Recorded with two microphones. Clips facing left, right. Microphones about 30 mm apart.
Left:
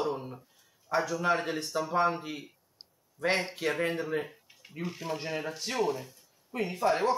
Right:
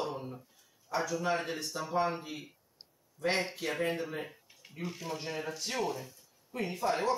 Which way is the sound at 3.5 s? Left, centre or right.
Centre.